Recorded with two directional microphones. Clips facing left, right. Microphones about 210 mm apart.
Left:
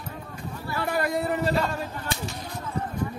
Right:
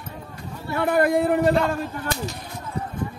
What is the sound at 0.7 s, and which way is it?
Speech, 55° right (ahead or behind).